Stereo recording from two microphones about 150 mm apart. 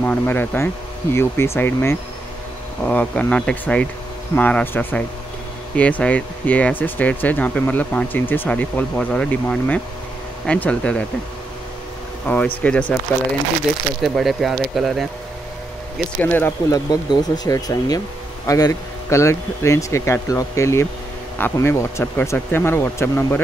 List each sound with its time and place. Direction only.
0.0 s speech: 15° left (ahead or behind)
12.3 s speech: 10° left (ahead or behind)
14.0 s speech: centre (ahead or behind)
16.2 s speech: 15° left (ahead or behind)